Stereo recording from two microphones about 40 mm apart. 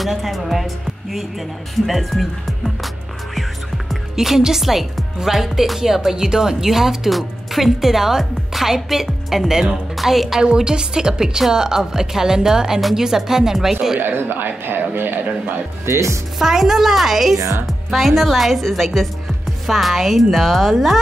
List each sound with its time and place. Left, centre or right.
0.0 s speech: centre
1.9 s speech: centre
3.3 s music: centre
4.1 s speech: centre
10.4 s speech: right
13.9 s speech: right
16.3 s speech: centre